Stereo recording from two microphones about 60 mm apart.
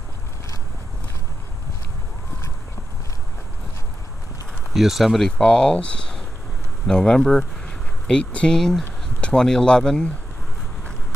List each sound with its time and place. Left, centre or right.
4.7 s speech: centre
5.4 s speech: centre
7.6 s a sound: centre
8.5 s speech: centre